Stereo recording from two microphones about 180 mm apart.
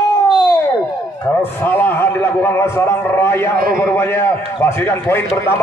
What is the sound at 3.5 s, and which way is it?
Speech, 55° right (ahead or behind).